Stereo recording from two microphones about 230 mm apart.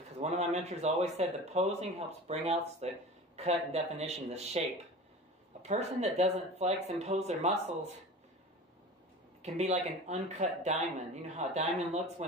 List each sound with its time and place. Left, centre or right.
0.2 s speech: right
9.4 s speech: right